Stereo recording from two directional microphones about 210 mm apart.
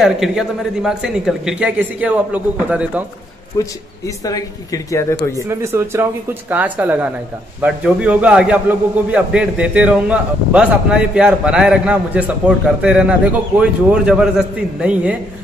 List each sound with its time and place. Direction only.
0.0 s a man's voice: centre (ahead or behind)
3.5 s a man's voice: 15° left (ahead or behind)
5.5 s a man's voice: 15° right (ahead or behind)